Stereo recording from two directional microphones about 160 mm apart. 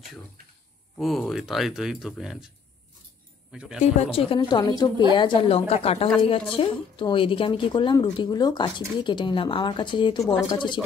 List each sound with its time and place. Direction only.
0.9 s speech: centre (ahead or behind)
3.5 s speech: 5° right (ahead or behind)
3.8 s a woman's voice: 40° left (ahead or behind)